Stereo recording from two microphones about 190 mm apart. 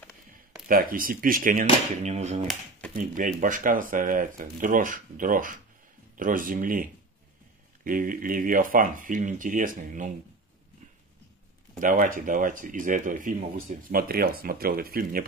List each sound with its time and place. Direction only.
0.7 s speech: 50° right (ahead or behind)
11.8 s speech: 45° right (ahead or behind)